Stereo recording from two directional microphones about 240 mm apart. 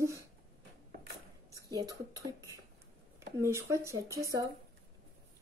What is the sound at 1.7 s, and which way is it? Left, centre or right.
Speech, centre.